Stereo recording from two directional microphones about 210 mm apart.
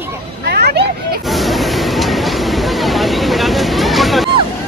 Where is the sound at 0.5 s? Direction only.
50° right (ahead or behind).